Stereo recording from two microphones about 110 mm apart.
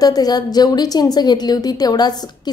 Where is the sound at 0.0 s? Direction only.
35° left (ahead or behind).